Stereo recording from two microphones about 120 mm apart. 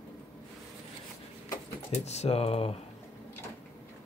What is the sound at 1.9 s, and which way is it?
Speech, 65° left (ahead or behind).